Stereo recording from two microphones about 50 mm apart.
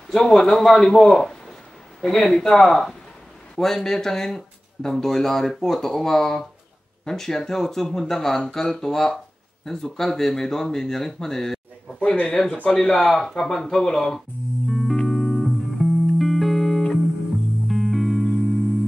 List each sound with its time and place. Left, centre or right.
0.1 s a man's voice: centre
12.0 s speech: left
12.6 s speech: centre
14.7 s music: centre